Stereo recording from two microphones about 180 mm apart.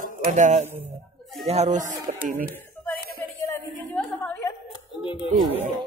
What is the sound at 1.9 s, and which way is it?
Speech, 15° right (ahead or behind).